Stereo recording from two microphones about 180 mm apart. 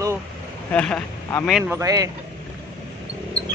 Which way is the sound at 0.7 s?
5° left (ahead or behind).